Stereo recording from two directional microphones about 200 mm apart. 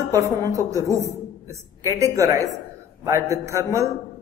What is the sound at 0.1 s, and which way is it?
A man's voice, 15° right (ahead or behind).